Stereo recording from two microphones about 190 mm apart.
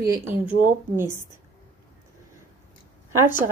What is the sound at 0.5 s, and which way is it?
Speech, 45° right (ahead or behind).